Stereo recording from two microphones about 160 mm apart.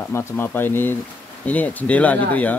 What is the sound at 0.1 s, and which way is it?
Speech, 15° left (ahead or behind).